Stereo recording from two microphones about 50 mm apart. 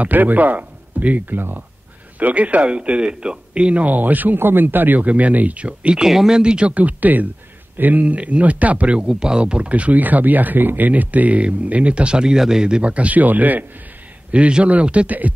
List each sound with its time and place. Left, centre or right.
0.0 s speech: right
6.0 s speech: centre; by 9.0 s right
9.0 s speech: centre; by 13.7 s right
14.3 s speech: right